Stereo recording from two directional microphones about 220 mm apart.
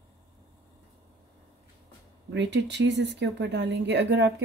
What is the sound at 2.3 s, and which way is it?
Speech, 50° right (ahead or behind).